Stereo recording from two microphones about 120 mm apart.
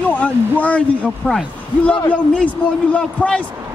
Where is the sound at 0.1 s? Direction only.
10° left (ahead or behind).